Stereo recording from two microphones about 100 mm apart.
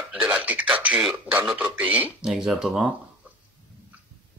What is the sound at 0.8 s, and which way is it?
Speech, 10° right (ahead or behind).